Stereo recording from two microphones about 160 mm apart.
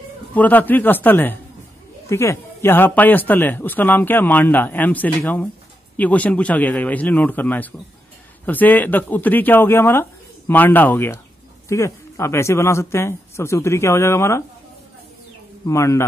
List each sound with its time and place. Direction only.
0.3 s speech: 10° left (ahead or behind)
15.6 s speech: 20° left (ahead or behind)